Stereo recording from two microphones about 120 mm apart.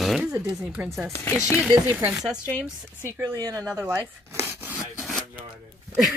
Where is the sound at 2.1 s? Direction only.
5° right (ahead or behind).